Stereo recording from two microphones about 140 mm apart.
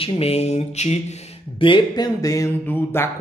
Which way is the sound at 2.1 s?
25° left (ahead or behind).